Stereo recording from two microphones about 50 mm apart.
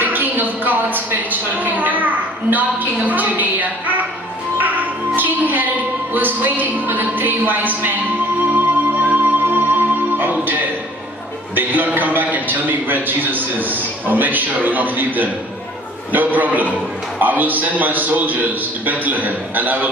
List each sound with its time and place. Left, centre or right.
0.0 s a sound: right
4.6 s music: right
6.1 s a man's voice: right
8.5 s music: right
11.5 s a man's voice: right